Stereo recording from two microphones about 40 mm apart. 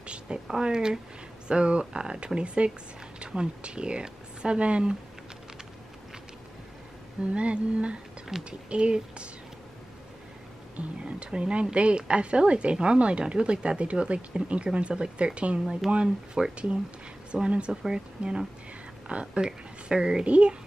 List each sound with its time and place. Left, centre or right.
0.0 s a woman's voice: right
7.3 s a sound: right
8.5 s speech: right
10.8 s speech: right
15.8 s speech: centre
17.3 s speech: right
20.2 s speech: right